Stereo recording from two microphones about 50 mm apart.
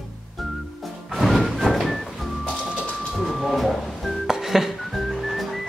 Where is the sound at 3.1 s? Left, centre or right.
Centre.